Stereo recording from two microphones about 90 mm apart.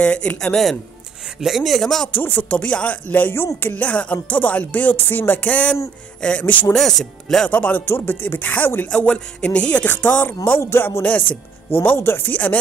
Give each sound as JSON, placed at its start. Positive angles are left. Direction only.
{"t": 0.0, "sound": "speech", "side_deg": 15}
{"t": 1.4, "sound": "speech", "side_deg": -5}
{"t": 2.1, "sound": "speech", "side_deg": 20}
{"t": 7.5, "sound": "speech", "side_deg": 20}
{"t": 10.6, "sound": "speech", "side_deg": 30}
{"t": 11.0, "sound": "speech", "side_deg": 15}